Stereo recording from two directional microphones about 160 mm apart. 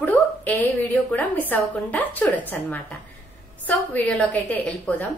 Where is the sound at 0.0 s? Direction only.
10° left (ahead or behind).